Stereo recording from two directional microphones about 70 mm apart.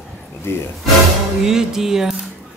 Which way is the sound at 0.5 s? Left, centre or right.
Left.